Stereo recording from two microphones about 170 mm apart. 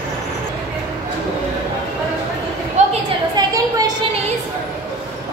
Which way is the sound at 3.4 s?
25° right (ahead or behind).